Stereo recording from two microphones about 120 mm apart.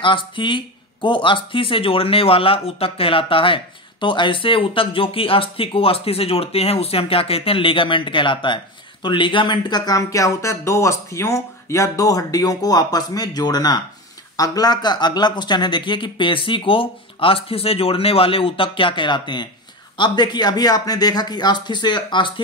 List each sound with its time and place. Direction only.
0.0 s speech: 45° left (ahead or behind)